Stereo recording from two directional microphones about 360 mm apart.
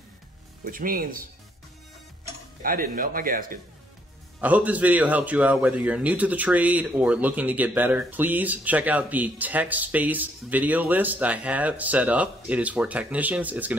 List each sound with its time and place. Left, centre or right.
0.7 s speech: right
2.6 s speech: right
4.4 s a man's voice: centre